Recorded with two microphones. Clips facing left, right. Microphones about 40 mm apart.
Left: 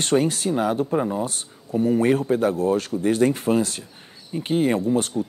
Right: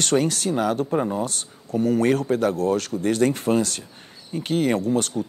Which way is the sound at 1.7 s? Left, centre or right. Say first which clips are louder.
Left 1 dB; left.